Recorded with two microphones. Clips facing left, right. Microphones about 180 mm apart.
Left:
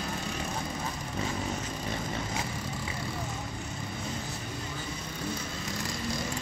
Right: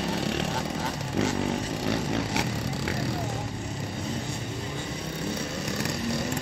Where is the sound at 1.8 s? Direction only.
75° right (ahead or behind).